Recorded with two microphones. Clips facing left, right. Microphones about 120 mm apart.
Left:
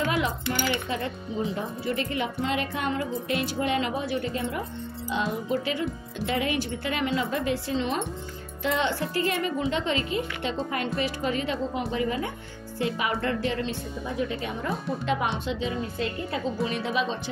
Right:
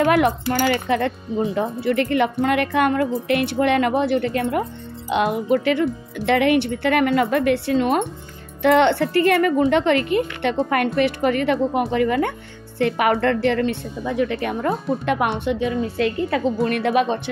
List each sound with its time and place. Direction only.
0.0 s speech: 65° right (ahead or behind)
0.6 s speech: 80° right
16.6 s speech: 60° right (ahead or behind)